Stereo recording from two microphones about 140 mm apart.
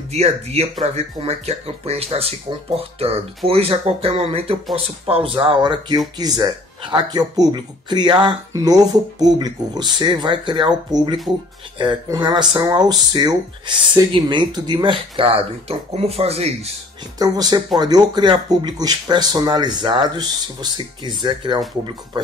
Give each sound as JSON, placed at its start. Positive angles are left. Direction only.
{"t": 0.1, "sound": "speech", "side_deg": -50}
{"t": 11.3, "sound": "speech", "side_deg": -10}
{"t": 11.8, "sound": "speech", "side_deg": -30}
{"t": 17.2, "sound": "speech", "side_deg": -30}